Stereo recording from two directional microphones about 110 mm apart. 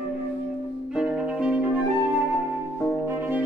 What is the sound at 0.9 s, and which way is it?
Music, 5° right (ahead or behind).